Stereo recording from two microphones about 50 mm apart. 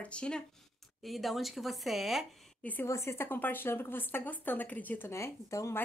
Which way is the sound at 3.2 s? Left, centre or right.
Left.